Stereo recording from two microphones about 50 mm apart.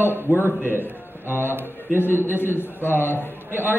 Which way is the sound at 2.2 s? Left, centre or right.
Left.